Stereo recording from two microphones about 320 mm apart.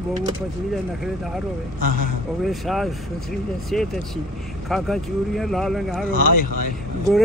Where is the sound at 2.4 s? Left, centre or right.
Centre.